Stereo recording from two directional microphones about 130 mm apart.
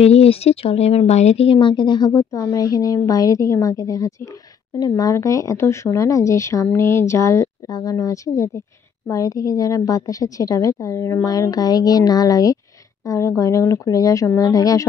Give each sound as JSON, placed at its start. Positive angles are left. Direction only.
{"t": 0.0, "sound": "a woman's voice", "side_deg": 50}